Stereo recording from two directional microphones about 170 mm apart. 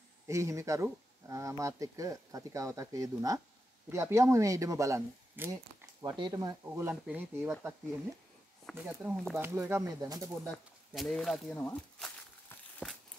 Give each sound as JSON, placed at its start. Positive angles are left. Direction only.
{"t": 0.3, "sound": "speech", "side_deg": -15}
{"t": 6.0, "sound": "speech", "side_deg": -25}
{"t": 8.8, "sound": "speech", "side_deg": -5}
{"t": 9.4, "sound": "speech", "side_deg": -15}
{"t": 10.4, "sound": "a sound", "side_deg": 5}